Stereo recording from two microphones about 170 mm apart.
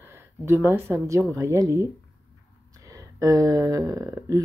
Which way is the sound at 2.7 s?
20° right (ahead or behind).